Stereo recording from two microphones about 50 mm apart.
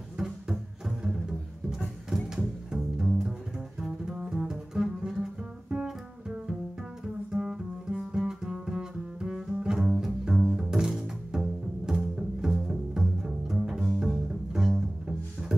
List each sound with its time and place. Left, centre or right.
0.8 s bowed string instrument: centre
2.2 s music: centre
3.8 s double bass: centre
7.3 s music: centre
9.6 s double bass: right
9.8 s bowed string instrument: centre
13.6 s double bass: centre